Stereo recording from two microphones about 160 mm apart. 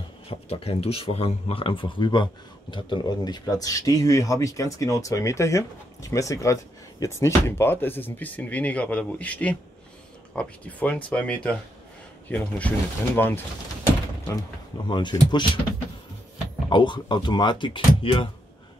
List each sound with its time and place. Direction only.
0.3 s speech: 40° left (ahead or behind); by 13.4 s 10° left (ahead or behind)
14.9 s speech: 30° left (ahead or behind)
16.6 s speech: 30° left (ahead or behind)